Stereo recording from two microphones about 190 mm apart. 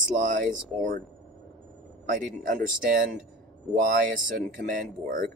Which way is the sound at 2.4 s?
45° right (ahead or behind).